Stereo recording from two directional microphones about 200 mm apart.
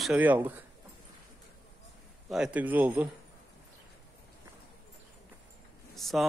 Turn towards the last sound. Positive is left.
turn(degrees=0)  # may be behind; listen again after turning